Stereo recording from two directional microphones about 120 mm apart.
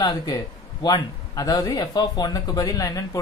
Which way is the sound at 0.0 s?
35° left (ahead or behind).